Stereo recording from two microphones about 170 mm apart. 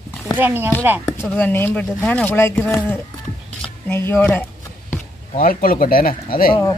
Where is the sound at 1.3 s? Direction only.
10° left (ahead or behind).